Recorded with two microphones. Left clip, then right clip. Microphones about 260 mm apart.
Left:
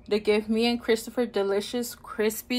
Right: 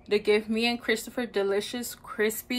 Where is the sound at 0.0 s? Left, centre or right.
Centre.